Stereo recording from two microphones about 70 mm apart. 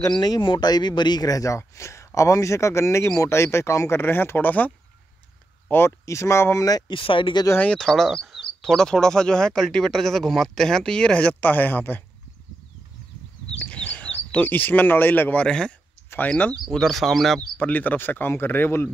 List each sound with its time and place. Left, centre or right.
0.1 s speech: left
4.0 s speech: left
6.0 s speech: left
7.3 s speech: left
7.7 s speech: centre; by 12.0 s left
13.6 s speech: centre
15.4 s speech: centre
16.3 s speech: left
16.7 s speech: centre
17.6 s speech: left